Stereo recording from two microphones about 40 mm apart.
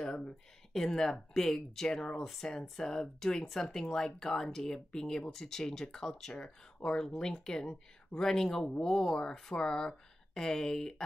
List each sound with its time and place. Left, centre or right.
0.0 s a sound: centre
0.7 s speech: centre
6.4 s speech: left